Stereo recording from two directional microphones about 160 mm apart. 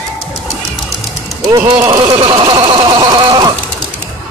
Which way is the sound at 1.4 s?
20° right (ahead or behind).